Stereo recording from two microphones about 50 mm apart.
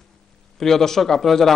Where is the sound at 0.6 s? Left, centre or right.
Centre.